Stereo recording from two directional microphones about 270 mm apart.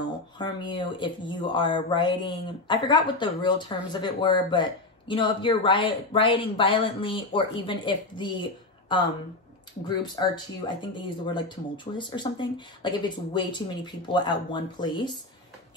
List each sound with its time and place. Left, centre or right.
0.4 s speech: centre